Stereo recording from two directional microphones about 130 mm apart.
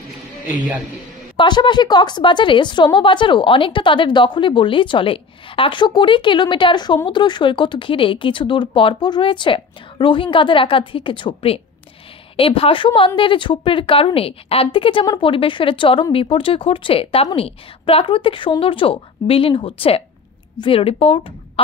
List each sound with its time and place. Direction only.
1.3 s a woman's voice: 40° left (ahead or behind)